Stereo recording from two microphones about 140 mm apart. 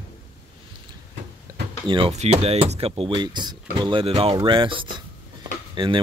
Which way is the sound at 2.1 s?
50° right (ahead or behind).